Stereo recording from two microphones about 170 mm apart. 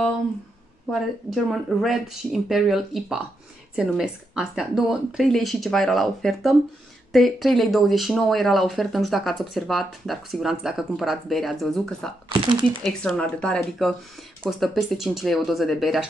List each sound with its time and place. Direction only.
0.9 s speech: centre (ahead or behind)
12.3 s speech: 30° right (ahead or behind)
12.8 s speech: 5° left (ahead or behind)